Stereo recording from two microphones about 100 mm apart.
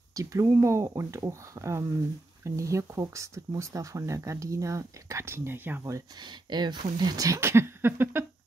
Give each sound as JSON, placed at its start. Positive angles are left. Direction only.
{"t": 0.1, "sound": "speech", "side_deg": -35}
{"t": 6.1, "sound": "speech", "side_deg": -45}